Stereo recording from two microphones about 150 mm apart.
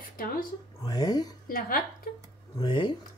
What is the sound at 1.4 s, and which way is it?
Speech, 75° left (ahead or behind).